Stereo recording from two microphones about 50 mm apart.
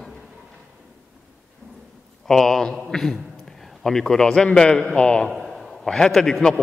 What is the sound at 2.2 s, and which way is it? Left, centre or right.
A man's voice, centre.